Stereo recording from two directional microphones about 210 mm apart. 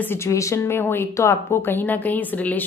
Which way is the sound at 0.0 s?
10° left (ahead or behind).